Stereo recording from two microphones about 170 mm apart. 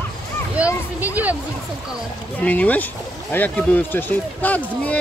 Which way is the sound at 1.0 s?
10° right (ahead or behind).